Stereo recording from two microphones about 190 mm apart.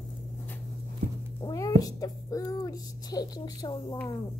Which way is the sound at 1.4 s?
20° left (ahead or behind).